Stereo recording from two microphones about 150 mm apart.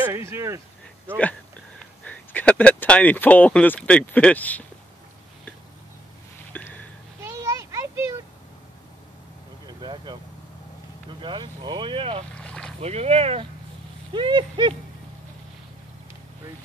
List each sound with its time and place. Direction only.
0.0 s speech: 15° right (ahead or behind)
2.0 s speech: 10° left (ahead or behind)
6.5 s a sound: 10° left (ahead or behind)
7.2 s a sound: 20° right (ahead or behind)
9.7 s vehicle: 30° right (ahead or behind)
11.1 s vehicle: 30° right (ahead or behind)
12.4 s boat: 5° left (ahead or behind)
12.8 s speech: 45° right (ahead or behind)